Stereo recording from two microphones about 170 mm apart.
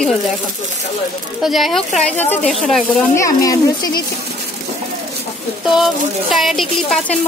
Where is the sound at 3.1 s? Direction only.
20° left (ahead or behind).